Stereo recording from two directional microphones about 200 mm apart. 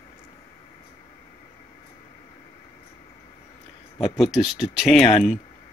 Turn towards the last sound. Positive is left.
turn(degrees=0)  # may be behind; listen again after turning